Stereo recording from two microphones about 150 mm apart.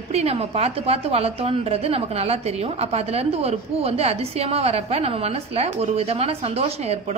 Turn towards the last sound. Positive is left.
turn(degrees=-45)  # may be behind; listen again after turning